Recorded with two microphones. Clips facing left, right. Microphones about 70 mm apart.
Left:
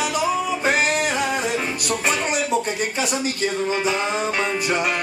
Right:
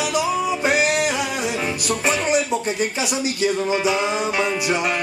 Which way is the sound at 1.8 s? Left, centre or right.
Centre.